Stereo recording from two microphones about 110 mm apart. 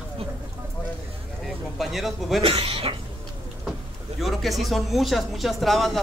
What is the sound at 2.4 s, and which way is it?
Speech, 55° right (ahead or behind).